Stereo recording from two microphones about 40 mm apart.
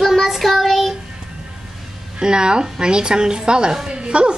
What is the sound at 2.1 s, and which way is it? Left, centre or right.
Speech, right.